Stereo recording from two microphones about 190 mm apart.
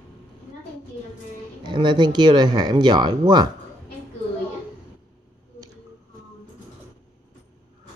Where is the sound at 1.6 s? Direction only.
25° right (ahead or behind).